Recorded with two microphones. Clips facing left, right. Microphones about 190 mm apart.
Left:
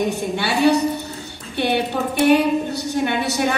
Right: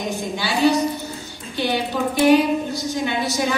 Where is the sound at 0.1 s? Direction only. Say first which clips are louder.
Left 2 dB; 65° left (ahead or behind).